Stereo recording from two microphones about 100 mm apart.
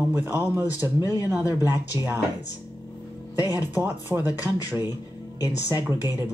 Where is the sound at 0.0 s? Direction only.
20° right (ahead or behind).